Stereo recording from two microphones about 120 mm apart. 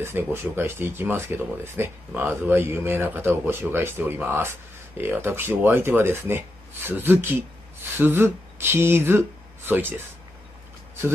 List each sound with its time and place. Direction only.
0.0 s speech: 20° right (ahead or behind)